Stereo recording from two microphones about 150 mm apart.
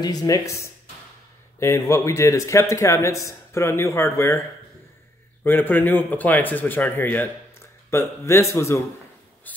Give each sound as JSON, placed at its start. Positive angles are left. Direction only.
{"t": 0.0, "sound": "speech", "side_deg": 25}
{"t": 5.4, "sound": "speech", "side_deg": 15}
{"t": 9.5, "sound": "a sound", "side_deg": 10}